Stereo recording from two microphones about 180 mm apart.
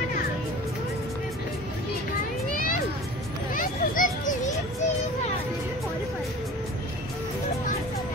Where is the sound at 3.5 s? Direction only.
50° left (ahead or behind).